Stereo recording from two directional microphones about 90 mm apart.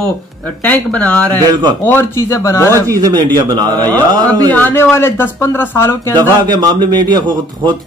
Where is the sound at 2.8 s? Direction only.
40° right (ahead or behind).